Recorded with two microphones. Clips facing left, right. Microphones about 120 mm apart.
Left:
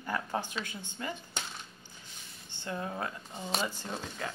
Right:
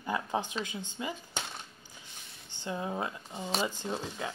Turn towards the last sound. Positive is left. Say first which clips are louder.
# right 3 dB
turn(degrees=-20)  # may be behind; listen again after turning